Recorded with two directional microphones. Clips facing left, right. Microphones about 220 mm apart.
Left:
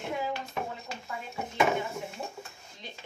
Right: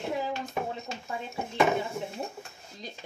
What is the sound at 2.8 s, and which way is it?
Speech, 40° right (ahead or behind).